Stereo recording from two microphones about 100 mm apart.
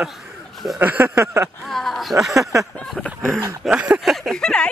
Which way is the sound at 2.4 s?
30° right (ahead or behind).